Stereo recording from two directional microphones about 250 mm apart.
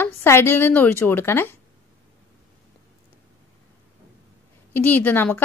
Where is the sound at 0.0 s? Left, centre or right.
Centre.